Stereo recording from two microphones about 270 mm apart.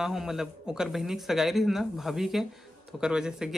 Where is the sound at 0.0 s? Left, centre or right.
Centre.